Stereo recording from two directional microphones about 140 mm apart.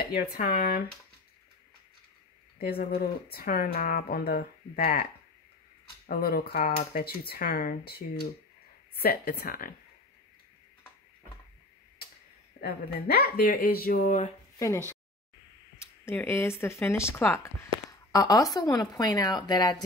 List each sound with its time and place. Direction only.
0.1 s speech: 90° left
2.6 s speech: 90° left
6.0 s speech: 90° left
12.5 s speech: 90° left
14.6 s speech: 20° left (ahead or behind)